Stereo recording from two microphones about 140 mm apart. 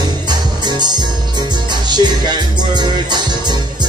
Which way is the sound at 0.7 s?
30° right (ahead or behind).